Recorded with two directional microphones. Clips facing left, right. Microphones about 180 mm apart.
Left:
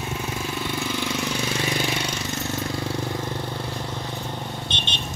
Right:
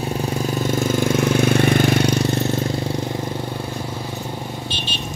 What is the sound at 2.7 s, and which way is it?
Vehicle, 20° right (ahead or behind).